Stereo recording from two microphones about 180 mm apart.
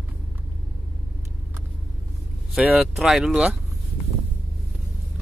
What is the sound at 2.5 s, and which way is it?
Speech, 5° right (ahead or behind).